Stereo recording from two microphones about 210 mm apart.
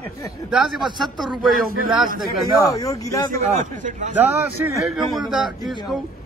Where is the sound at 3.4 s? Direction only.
35° right (ahead or behind).